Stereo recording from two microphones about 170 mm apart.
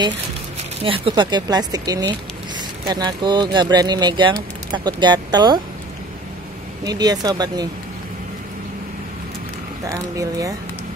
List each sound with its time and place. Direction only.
0.8 s speech: 30° right (ahead or behind)
6.8 s speech: 25° right (ahead or behind)
9.8 s speech: 20° right (ahead or behind)